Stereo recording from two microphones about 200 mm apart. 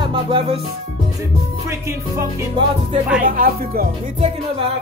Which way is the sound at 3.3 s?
45° right (ahead or behind).